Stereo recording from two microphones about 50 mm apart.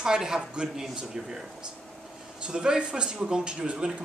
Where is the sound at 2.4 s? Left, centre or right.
Centre.